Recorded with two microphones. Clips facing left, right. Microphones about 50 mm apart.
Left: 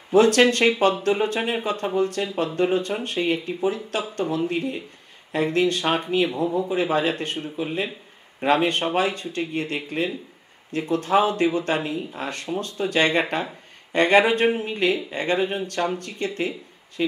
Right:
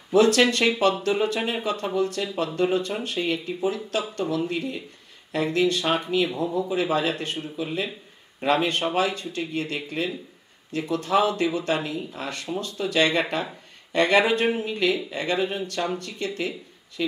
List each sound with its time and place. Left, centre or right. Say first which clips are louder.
0.1 s speech: left 2 dB; left
13.2 s speech: left 1 dB; left